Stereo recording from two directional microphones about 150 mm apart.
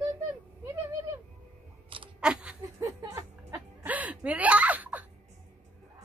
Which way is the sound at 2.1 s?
5° right (ahead or behind).